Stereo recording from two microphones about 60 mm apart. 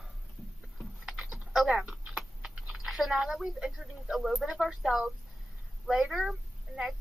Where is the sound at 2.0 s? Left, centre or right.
Centre.